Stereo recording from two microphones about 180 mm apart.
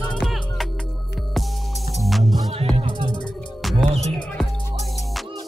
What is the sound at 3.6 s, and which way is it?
Music, centre (ahead or behind).